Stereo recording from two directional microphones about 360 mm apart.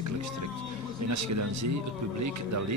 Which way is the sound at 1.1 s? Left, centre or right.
Right.